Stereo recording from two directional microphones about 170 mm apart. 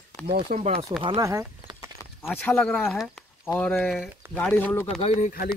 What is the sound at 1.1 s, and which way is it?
Speech, 20° right (ahead or behind).